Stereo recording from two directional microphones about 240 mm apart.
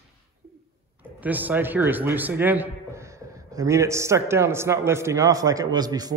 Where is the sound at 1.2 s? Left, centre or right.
Centre.